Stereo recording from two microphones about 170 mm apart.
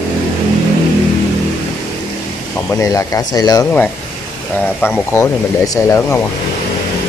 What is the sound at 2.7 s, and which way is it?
Speech, 20° left (ahead or behind).